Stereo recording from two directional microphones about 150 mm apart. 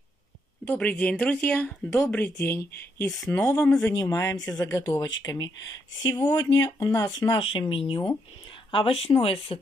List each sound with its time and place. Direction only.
0.7 s speech: 10° left (ahead or behind)
3.8 s speech: 20° left (ahead or behind); by 9.6 s 40° left (ahead or behind)